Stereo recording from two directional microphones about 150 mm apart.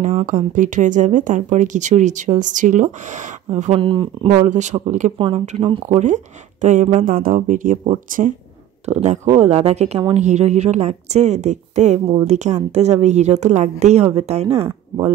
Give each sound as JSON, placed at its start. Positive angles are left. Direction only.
{"t": 0.0, "sound": "speech", "side_deg": -55}
{"t": 3.4, "sound": "speech", "side_deg": -45}
{"t": 3.8, "sound": "speech", "side_deg": -35}
{"t": 4.3, "sound": "speech", "side_deg": -50}
{"t": 5.1, "sound": "speech", "side_deg": -35}
{"t": 5.9, "sound": "speech", "side_deg": -50}
{"t": 7.0, "sound": "speech", "side_deg": -65}